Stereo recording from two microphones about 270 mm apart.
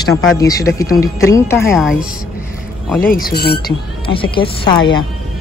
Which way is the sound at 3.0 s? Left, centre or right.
Left.